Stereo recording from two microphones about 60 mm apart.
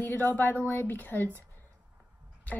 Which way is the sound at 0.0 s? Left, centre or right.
Left.